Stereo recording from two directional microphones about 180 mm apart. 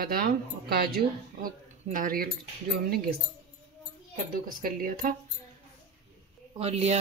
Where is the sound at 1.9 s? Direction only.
50° right (ahead or behind).